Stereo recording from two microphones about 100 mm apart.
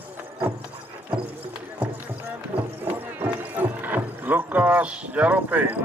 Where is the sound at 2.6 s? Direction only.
20° right (ahead or behind).